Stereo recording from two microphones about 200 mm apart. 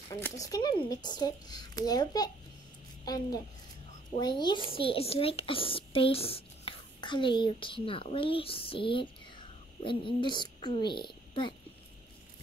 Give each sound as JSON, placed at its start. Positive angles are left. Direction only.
{"t": 0.1, "sound": "a woman's voice", "side_deg": 15}